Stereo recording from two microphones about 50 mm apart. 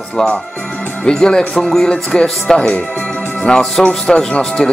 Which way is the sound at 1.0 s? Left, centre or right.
Centre.